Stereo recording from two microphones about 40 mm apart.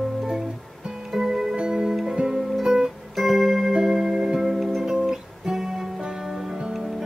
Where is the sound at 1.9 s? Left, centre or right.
Centre.